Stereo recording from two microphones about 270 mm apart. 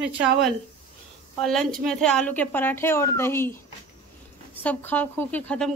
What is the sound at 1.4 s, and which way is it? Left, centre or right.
Speech, centre.